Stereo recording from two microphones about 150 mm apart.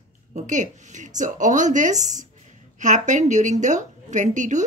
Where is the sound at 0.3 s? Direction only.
55° right (ahead or behind).